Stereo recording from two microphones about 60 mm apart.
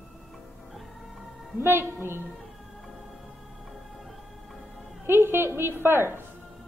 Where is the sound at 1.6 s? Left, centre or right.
Right.